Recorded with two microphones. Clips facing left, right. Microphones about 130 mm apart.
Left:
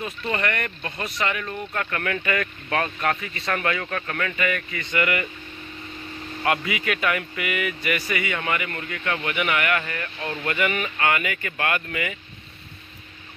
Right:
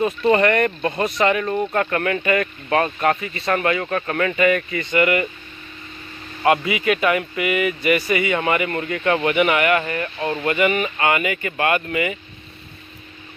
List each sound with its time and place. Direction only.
0.2 s speech: 35° right (ahead or behind)
6.4 s speech: 15° right (ahead or behind)